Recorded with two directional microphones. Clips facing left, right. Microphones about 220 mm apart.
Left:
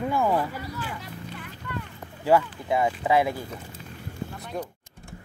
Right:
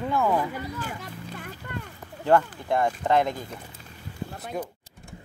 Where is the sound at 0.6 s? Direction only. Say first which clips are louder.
Right 1 dB; 45° right (ahead or behind).